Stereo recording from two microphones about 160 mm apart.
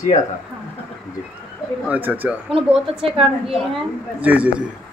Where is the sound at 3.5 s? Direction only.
5° right (ahead or behind).